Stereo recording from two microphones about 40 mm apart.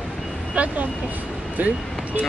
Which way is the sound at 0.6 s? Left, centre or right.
Right.